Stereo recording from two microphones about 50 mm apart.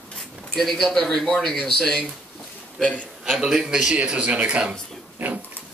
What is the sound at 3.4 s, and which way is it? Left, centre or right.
Speech, centre.